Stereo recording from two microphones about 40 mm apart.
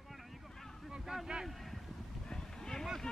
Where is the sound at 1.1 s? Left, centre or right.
Centre.